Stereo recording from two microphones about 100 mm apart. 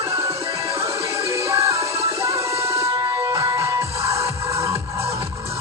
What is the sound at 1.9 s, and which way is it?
Music, 90° right.